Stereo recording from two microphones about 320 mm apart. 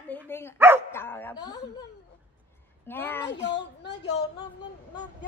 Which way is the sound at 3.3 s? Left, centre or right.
Left.